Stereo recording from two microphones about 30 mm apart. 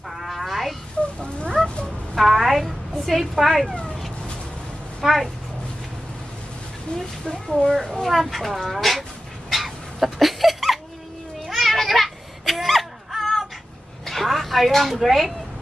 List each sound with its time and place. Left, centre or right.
0.2 s a sound: centre
2.1 s a sound: centre
5.0 s speech: centre
7.2 s speech: left
8.0 s speech: centre
9.5 s dog: centre
11.4 s baby cry: centre
14.0 s a sound: centre
14.9 s speech: centre